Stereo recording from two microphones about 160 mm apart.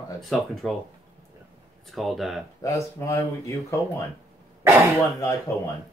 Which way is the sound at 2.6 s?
20° left (ahead or behind).